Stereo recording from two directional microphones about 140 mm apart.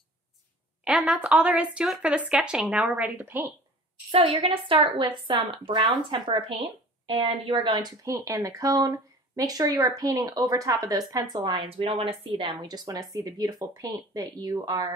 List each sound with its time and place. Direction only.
0.8 s a woman's voice: 5° right (ahead or behind)
4.1 s a woman's voice: 40° right (ahead or behind)
12.4 s speech: 30° right (ahead or behind)